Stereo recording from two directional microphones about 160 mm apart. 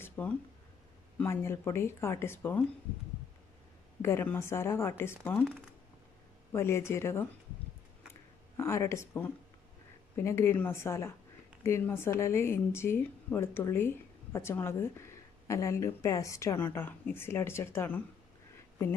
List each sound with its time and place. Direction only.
0.0 s a sound: 15° left (ahead or behind)
1.2 s speech: 15° left (ahead or behind)
4.0 s speech: 15° left (ahead or behind)
6.5 s speech: 15° left (ahead or behind)
8.5 s speech: 15° left (ahead or behind)